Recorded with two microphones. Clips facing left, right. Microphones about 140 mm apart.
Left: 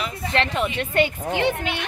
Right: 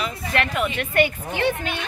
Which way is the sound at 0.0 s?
25° left (ahead or behind).